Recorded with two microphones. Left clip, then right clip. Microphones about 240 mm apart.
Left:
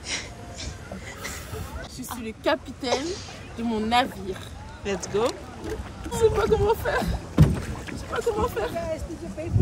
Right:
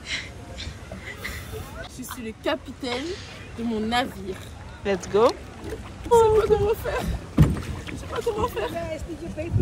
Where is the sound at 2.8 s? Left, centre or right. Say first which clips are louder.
Left 3 dB; left.